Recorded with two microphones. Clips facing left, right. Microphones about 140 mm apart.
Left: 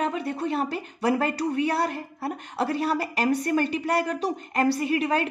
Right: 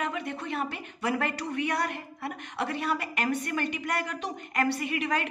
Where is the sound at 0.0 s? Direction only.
35° left (ahead or behind).